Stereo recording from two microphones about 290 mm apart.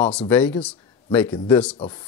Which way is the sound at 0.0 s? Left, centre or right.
Centre.